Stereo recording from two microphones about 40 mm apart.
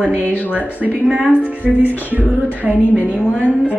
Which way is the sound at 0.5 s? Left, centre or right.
Right.